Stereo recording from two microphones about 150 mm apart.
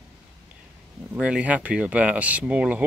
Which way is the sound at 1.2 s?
5° right (ahead or behind).